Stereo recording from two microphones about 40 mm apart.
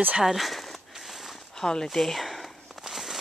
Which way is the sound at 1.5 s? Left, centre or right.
Centre.